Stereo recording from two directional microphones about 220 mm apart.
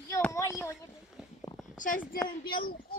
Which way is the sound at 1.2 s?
5° right (ahead or behind).